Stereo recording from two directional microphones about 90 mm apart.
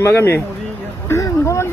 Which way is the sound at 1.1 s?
30° left (ahead or behind).